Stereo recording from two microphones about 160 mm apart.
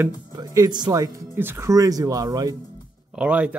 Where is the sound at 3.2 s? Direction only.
10° right (ahead or behind).